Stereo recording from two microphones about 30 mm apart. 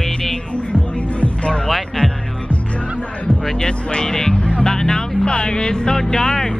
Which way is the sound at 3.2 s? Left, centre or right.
Left.